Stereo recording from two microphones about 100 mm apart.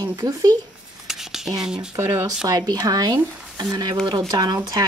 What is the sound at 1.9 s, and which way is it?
Speech, 35° right (ahead or behind).